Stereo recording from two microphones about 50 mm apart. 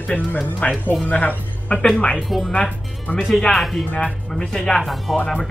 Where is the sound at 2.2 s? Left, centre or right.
Centre.